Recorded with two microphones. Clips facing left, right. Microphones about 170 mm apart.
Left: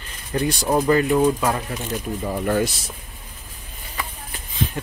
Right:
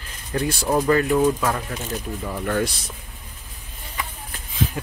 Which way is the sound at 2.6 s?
Centre (ahead or behind).